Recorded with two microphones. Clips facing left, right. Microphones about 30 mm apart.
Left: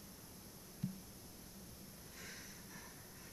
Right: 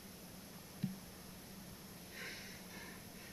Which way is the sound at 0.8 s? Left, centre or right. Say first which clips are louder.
Right 2 dB; right.